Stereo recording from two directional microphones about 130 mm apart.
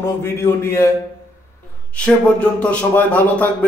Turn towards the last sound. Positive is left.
turn(degrees=10)  # may be behind; listen again after turning